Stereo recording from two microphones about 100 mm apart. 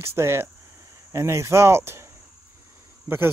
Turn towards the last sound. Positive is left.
turn(degrees=-20)  # may be behind; listen again after turning